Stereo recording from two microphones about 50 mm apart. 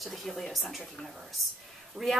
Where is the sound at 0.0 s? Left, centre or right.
Centre.